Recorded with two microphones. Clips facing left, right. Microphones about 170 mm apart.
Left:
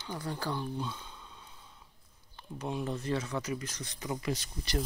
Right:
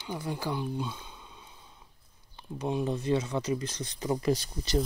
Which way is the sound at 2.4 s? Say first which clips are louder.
Right 5 dB; 20° right (ahead or behind).